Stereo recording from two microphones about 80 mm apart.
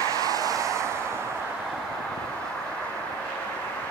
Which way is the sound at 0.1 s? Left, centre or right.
Right.